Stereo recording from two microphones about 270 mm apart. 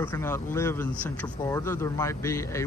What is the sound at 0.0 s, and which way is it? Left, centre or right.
Speech, centre.